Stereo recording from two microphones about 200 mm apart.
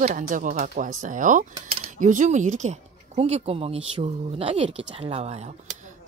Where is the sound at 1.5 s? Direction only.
30° right (ahead or behind).